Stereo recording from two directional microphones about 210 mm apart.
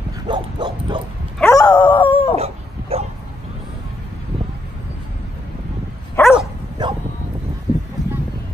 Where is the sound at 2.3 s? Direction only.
30° right (ahead or behind).